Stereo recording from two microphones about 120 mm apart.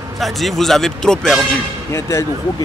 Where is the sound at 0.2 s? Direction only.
Centre (ahead or behind).